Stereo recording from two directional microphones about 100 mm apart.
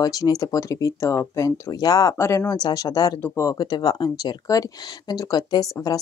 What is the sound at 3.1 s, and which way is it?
Speech, 25° left (ahead or behind).